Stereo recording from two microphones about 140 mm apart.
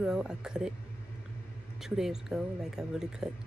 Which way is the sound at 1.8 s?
5° right (ahead or behind).